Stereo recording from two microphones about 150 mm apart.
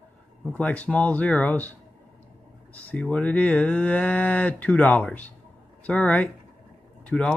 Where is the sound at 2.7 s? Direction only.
10° left (ahead or behind).